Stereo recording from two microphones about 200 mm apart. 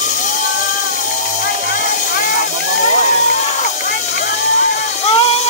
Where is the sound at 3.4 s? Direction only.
40° left (ahead or behind).